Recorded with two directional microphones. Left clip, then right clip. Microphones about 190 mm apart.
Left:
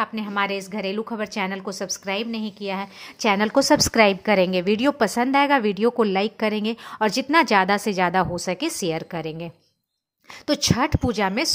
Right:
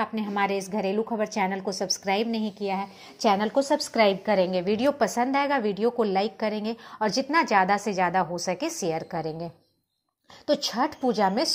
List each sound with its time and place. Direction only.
0.0 s a woman's voice: 10° left (ahead or behind)
2.6 s a woman's voice: 15° left (ahead or behind)
4.4 s a woman's voice: 55° left (ahead or behind)
11.0 s a woman's voice: 25° left (ahead or behind)